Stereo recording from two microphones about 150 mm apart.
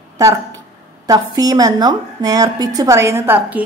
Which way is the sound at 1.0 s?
25° right (ahead or behind).